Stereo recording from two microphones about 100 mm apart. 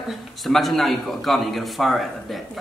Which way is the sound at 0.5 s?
Centre (ahead or behind).